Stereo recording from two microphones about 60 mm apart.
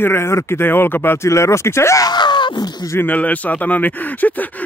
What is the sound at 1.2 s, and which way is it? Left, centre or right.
Speech, left.